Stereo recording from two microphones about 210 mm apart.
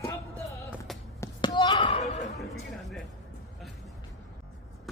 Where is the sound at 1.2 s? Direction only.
20° left (ahead or behind).